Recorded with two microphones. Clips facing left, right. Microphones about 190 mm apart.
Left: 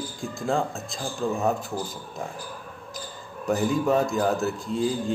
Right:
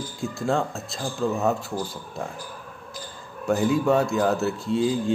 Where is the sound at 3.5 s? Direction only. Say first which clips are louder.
Right 2 dB; centre (ahead or behind).